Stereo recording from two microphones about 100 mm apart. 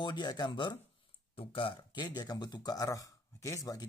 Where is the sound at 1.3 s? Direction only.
60° left (ahead or behind).